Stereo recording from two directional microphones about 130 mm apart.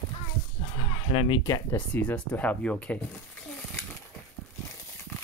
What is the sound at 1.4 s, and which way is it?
Speech, 25° left (ahead or behind).